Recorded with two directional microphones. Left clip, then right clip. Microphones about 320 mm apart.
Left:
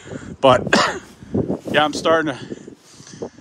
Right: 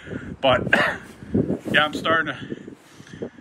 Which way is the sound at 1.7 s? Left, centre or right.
Centre.